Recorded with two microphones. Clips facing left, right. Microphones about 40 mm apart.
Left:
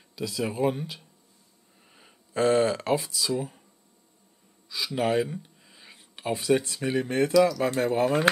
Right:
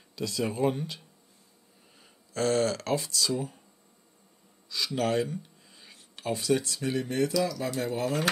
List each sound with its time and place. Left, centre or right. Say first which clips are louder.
0.1 s speech: left 1 dB; centre
2.0 s speech: left 5 dB; left
4.6 s speech: left 2 dB; centre; by 8.3 s left